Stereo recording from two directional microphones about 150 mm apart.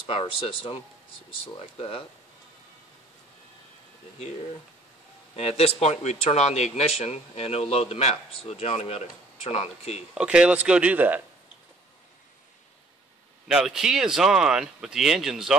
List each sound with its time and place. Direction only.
0.0 s speech: 35° left (ahead or behind)
5.3 s speech: 45° left (ahead or behind)
10.1 s speech: 5° right (ahead or behind)
13.5 s speech: 5° right (ahead or behind)